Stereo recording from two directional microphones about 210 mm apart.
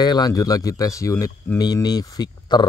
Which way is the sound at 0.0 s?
20° left (ahead or behind).